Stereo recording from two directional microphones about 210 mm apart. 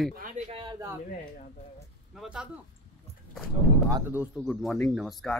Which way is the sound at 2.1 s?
Centre (ahead or behind).